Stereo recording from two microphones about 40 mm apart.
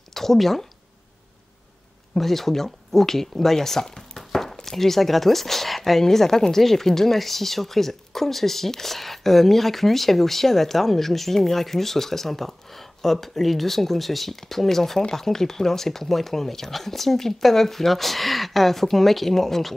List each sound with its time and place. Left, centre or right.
0.1 s speech: centre
2.1 s speech: centre
4.2 s a sound: centre
4.6 s speech: centre